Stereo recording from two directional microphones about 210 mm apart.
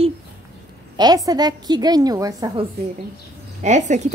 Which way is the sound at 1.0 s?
20° right (ahead or behind).